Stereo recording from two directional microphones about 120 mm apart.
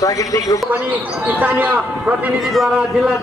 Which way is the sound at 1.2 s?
15° right (ahead or behind).